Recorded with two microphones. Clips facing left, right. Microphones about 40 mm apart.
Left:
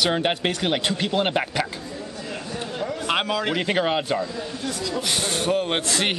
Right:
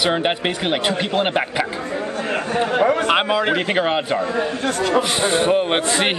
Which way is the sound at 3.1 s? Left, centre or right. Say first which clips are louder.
Right 6 dB; right.